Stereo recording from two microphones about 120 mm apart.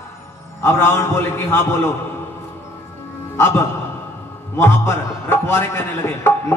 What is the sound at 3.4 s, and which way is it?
Speech, 20° left (ahead or behind).